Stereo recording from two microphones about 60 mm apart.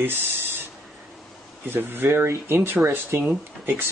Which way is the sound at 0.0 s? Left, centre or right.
Right.